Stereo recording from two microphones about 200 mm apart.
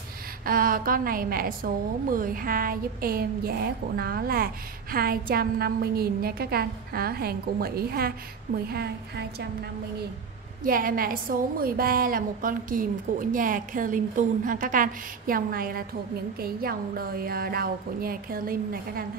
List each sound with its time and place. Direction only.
0.5 s a woman's voice: 45° right (ahead or behind)
10.6 s a woman's voice: 45° right (ahead or behind)